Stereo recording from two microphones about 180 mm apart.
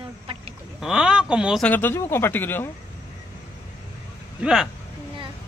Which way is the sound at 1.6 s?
10° left (ahead or behind).